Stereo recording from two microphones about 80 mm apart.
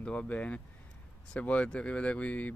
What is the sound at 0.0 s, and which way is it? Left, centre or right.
Speech, centre.